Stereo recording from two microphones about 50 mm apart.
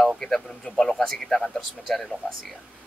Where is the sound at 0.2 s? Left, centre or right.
Centre.